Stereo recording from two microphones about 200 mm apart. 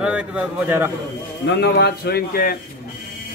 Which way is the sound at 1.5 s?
55° left (ahead or behind).